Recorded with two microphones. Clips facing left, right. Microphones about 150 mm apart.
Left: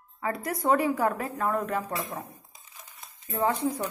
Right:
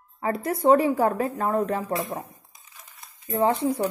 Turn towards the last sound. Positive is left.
turn(degrees=-25)  # may be behind; listen again after turning